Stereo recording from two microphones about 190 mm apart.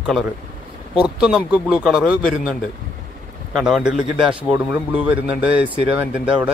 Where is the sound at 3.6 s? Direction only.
5° right (ahead or behind).